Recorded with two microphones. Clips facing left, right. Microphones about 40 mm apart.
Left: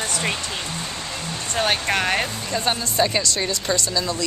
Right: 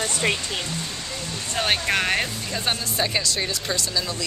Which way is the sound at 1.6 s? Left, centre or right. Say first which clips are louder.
Left 1 dB; centre.